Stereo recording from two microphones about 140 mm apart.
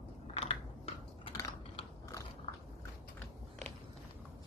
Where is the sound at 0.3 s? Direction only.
45° left (ahead or behind).